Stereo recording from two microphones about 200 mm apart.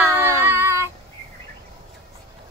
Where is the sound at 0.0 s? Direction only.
10° right (ahead or behind).